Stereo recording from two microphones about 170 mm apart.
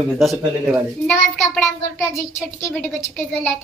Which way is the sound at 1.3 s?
10° left (ahead or behind).